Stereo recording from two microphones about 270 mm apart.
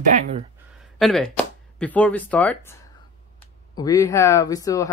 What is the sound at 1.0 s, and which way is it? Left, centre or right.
Speech, centre.